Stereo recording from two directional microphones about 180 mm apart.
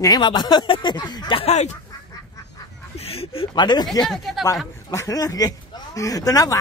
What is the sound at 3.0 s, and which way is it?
Speech, 30° left (ahead or behind).